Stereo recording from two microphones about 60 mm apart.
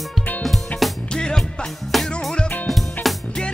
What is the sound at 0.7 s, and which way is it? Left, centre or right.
Music, left.